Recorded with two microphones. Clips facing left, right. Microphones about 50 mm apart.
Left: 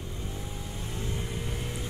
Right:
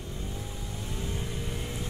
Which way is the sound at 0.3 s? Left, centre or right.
Centre.